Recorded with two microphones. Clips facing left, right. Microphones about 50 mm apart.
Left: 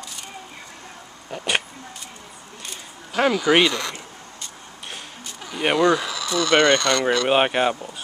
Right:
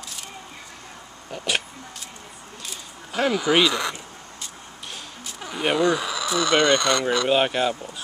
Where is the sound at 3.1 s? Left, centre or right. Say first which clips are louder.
Left 3 dB; centre.